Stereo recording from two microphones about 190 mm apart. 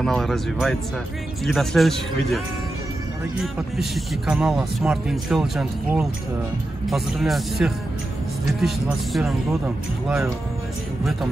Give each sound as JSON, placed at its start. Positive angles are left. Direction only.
{"t": 0.0, "sound": "speech", "side_deg": 0}
{"t": 3.7, "sound": "speech", "side_deg": 0}